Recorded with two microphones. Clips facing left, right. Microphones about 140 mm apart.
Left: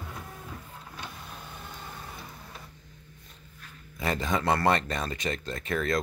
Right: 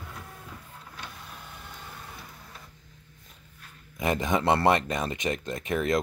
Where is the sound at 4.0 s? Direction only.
15° right (ahead or behind).